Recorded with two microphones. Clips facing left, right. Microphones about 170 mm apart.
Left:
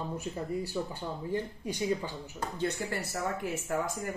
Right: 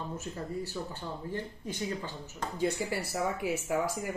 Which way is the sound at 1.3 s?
15° left (ahead or behind).